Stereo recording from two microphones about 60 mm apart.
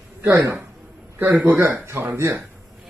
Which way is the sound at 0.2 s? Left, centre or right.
Right.